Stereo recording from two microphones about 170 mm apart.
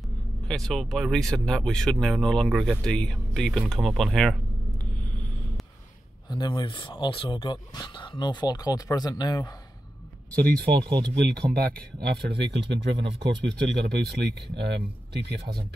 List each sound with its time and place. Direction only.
0.5 s speech: 5° left (ahead or behind)
6.2 s speech: 25° left (ahead or behind)
10.8 s speech: 25° right (ahead or behind)
11.1 s speech: 90° right
11.5 s speech: 70° right (ahead or behind)